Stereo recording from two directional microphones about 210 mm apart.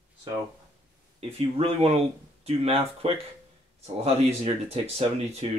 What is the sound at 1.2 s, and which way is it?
Speech, 25° right (ahead or behind).